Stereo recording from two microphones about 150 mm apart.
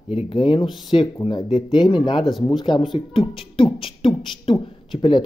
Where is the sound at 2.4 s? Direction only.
30° left (ahead or behind).